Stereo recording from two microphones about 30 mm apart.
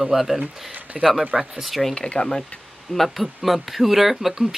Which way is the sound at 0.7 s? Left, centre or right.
Right.